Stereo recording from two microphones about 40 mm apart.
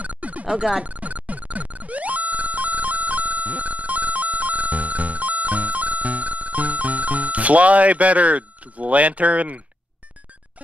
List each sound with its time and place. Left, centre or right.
0.0 s music: right
0.6 s speech: right
0.8 s music: right